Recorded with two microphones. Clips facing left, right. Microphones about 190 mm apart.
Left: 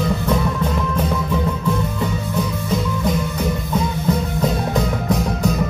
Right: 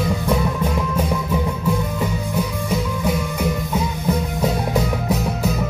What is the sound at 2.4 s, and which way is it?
Music, 10° right (ahead or behind).